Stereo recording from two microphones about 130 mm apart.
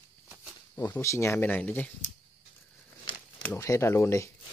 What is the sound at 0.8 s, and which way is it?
Speech, 20° left (ahead or behind).